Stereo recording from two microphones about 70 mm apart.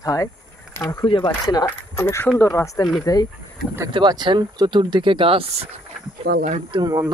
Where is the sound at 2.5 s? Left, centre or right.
Left.